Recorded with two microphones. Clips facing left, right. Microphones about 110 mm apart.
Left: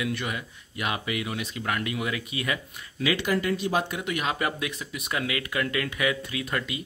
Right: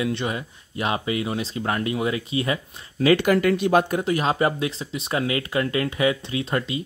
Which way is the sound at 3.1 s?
55° right (ahead or behind).